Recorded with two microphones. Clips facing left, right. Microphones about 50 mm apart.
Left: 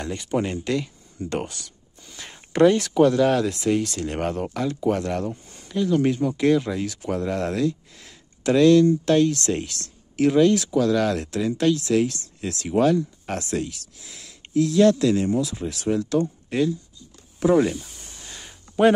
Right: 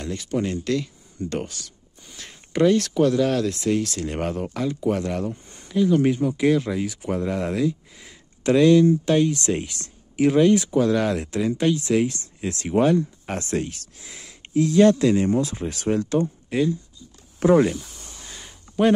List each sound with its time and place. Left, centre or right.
0.0 s speech: centre
13.4 s speech: right
14.5 s speech: right
15.2 s speech: right
15.9 s speech: right
16.5 s speech: centre
17.5 s a sound: centre